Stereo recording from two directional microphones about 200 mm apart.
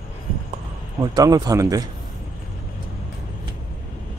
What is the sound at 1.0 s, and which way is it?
Speech, 20° right (ahead or behind).